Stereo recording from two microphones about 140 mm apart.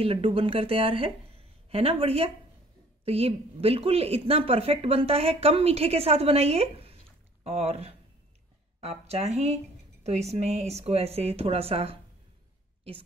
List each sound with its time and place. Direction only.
0.0 s a woman's voice: 40° right (ahead or behind)